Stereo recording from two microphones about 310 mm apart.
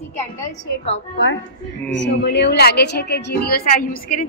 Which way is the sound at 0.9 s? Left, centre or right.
Left.